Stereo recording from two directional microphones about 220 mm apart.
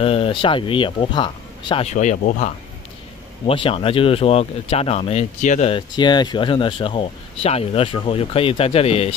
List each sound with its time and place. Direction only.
0.0 s speech: 25° left (ahead or behind)